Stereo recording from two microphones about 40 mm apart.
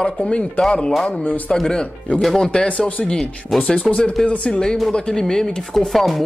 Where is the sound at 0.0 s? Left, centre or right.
Left.